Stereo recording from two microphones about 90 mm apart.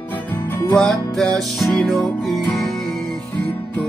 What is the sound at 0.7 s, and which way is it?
Music, 10° left (ahead or behind).